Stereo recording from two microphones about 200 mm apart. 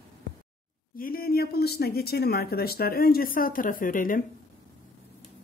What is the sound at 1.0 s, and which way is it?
Speech, 45° left (ahead or behind).